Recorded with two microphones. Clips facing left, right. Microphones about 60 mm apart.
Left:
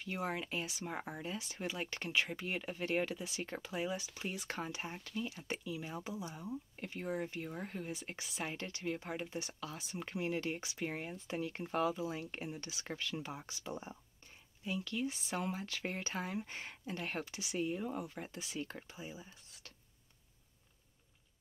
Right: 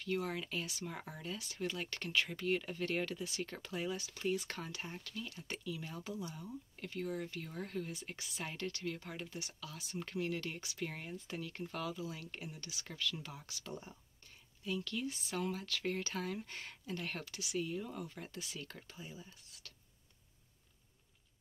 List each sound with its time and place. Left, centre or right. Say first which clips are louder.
0.0 s speech: right 1 dB; centre